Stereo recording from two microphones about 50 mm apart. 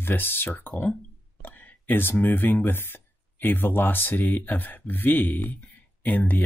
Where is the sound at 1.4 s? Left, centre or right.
Left.